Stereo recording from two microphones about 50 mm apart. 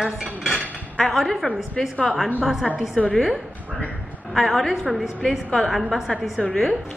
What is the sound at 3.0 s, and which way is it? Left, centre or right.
Speech, centre.